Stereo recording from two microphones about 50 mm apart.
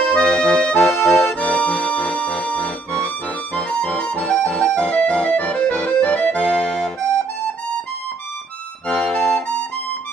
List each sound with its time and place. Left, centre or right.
0.0 s music: centre
0.8 s accordion: centre
1.4 s music: left
3.5 s music: centre
3.8 s music: left
6.4 s accordion: centre
8.8 s accordion: centre